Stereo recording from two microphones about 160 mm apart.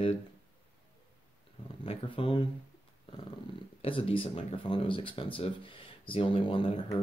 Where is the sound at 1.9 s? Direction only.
35° left (ahead or behind).